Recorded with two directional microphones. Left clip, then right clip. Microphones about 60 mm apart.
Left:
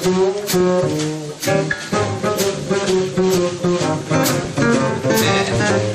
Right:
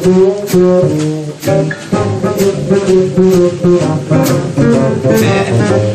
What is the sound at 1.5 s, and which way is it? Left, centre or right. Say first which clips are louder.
Music: right 5 dB; left.